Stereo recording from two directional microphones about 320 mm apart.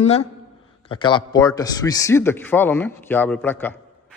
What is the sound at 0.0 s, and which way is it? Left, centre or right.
Speech, centre.